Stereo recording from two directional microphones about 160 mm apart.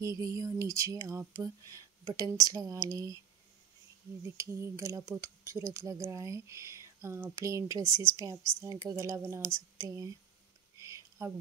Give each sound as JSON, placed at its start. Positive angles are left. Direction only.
{"t": 0.0, "sound": "speech", "side_deg": -20}
{"t": 4.4, "sound": "speech", "side_deg": -20}
{"t": 10.8, "sound": "a sound", "side_deg": -15}